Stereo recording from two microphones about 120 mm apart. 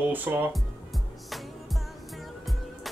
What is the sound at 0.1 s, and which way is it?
Speech, 15° right (ahead or behind).